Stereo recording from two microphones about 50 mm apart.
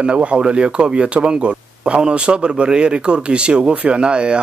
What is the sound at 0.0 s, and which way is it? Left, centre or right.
Speech, right.